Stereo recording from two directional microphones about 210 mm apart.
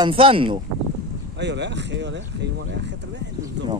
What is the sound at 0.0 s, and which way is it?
Speech, 25° right (ahead or behind).